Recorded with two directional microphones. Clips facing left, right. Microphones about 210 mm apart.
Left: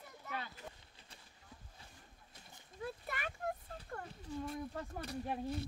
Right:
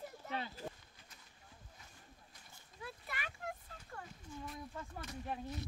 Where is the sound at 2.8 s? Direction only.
45° left (ahead or behind).